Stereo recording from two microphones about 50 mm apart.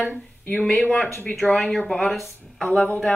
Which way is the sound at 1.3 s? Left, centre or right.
Centre.